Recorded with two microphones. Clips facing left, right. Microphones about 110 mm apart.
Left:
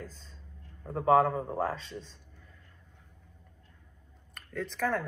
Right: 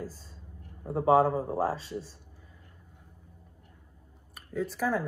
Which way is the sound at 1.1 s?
30° right (ahead or behind).